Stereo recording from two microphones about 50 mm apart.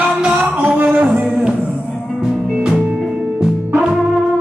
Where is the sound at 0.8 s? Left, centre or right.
Right.